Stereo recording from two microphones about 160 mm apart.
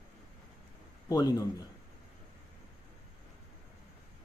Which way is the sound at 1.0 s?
25° left (ahead or behind).